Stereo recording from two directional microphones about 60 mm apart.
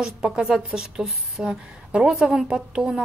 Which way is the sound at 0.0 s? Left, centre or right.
Centre.